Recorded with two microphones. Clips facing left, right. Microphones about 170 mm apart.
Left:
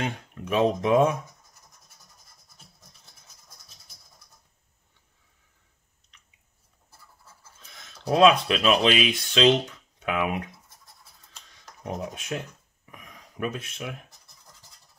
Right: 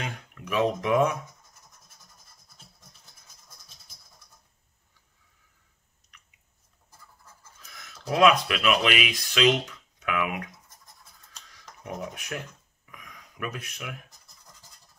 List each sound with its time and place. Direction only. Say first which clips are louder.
0.0 s speech: left 6 dB; 30° left (ahead or behind)
7.5 s speech: right 2 dB; 25° left (ahead or behind)
11.5 s a sound: left 3 dB; 30° left (ahead or behind)